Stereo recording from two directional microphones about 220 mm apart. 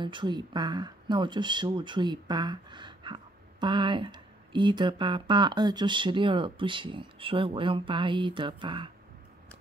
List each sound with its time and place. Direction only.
0.0 s speech: 20° right (ahead or behind)